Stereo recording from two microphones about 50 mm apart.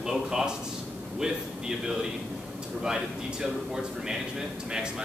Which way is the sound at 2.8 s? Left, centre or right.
Centre.